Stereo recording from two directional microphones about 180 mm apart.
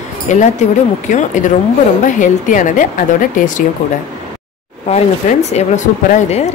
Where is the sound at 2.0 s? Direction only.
45° left (ahead or behind).